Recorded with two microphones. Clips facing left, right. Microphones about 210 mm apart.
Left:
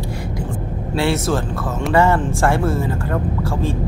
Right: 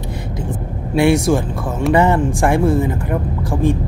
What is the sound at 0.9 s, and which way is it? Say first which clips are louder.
Speech: right 5 dB; 15° right (ahead or behind).